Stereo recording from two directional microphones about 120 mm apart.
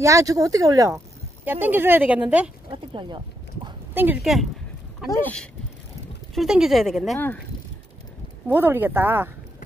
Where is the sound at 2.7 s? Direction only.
40° right (ahead or behind).